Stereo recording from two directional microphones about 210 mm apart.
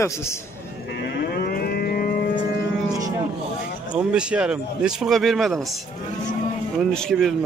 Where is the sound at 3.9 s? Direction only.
5° right (ahead or behind).